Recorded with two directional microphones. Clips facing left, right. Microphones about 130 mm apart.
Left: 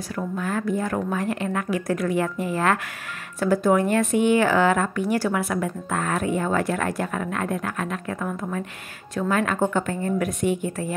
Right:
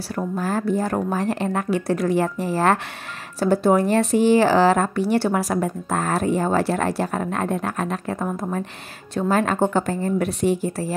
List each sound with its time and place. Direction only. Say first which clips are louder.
0.4 s speech: right 3 dB; 35° right (ahead or behind)